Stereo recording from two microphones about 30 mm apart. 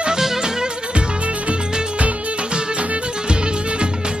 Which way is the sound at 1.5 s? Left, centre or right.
Right.